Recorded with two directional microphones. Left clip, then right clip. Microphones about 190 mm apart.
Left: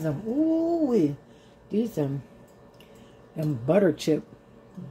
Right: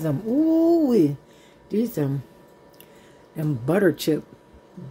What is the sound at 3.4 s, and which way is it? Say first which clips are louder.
Speech: right 1 dB; 20° right (ahead or behind).